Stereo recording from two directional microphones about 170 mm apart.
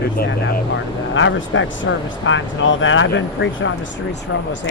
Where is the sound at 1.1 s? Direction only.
90° left.